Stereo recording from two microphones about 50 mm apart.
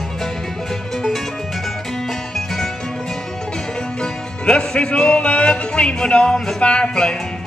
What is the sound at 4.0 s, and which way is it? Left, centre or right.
Music, centre.